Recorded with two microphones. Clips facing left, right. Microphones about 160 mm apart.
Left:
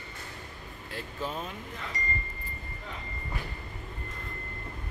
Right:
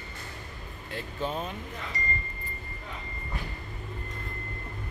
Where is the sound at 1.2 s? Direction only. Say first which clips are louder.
Right 4 dB; 35° right (ahead or behind).